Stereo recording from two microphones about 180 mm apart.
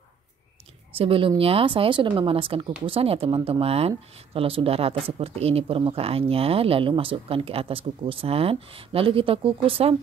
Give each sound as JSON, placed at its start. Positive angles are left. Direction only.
{"t": 0.9, "sound": "speech", "side_deg": -30}